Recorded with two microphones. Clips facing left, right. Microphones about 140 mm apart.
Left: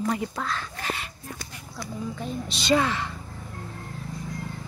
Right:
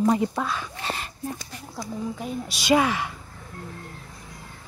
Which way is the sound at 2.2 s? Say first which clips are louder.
Even; 10° right (ahead or behind).